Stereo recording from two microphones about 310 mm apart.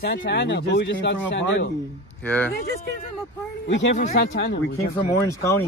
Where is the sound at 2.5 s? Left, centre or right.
Left.